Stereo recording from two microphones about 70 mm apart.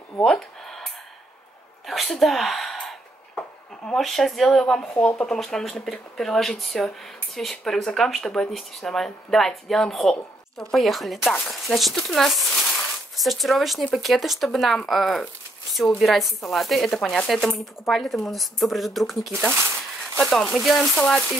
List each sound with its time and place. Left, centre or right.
0.2 s speech: centre
1.9 s speech: centre
12.6 s a sound: centre
13.1 s speech: centre
19.3 s speech: centre
20.9 s speech: centre